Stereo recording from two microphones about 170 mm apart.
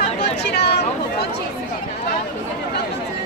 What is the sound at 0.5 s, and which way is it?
Chatter, 75° left (ahead or behind).